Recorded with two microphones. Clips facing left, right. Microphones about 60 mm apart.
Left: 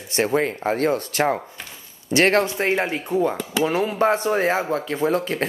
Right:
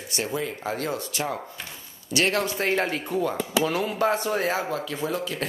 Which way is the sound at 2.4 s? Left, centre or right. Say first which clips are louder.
Left 3 dB; left.